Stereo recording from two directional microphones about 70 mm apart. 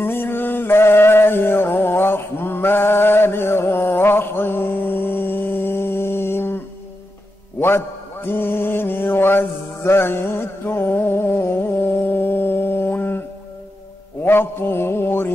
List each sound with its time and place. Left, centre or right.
0.0 s music: left
7.6 s mantra: left
14.2 s mantra: left